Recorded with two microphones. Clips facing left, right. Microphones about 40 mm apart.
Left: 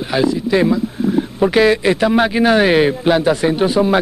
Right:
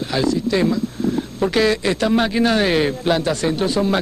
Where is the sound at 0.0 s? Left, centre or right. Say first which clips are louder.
Left 3 dB; centre.